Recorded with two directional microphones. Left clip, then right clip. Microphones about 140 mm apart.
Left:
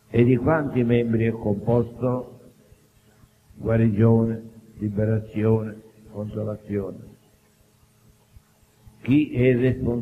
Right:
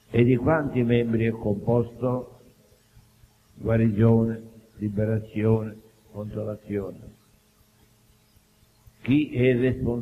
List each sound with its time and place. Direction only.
0.1 s a man's voice: 40° right (ahead or behind)
3.6 s a man's voice: 40° right (ahead or behind)
9.0 s a man's voice: 40° right (ahead or behind)